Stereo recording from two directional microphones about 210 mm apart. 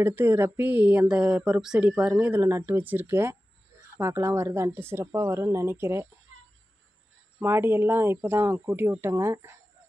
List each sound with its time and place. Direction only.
0.0 s speech: 10° right (ahead or behind)
6.3 s a sound: 90° right
7.3 s speech: 10° right (ahead or behind)